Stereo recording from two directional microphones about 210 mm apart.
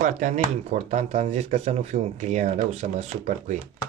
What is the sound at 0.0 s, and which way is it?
Speech, 35° right (ahead or behind).